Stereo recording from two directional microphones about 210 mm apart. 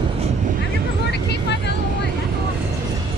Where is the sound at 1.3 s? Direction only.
55° left (ahead or behind).